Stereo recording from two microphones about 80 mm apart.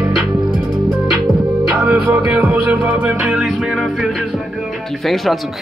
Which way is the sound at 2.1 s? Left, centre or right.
Right.